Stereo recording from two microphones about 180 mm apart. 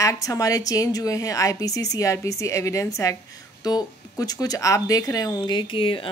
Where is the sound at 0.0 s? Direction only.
15° left (ahead or behind).